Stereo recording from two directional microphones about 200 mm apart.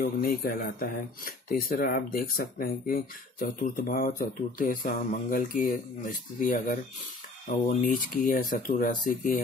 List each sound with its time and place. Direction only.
0.0 s speech: 50° left (ahead or behind)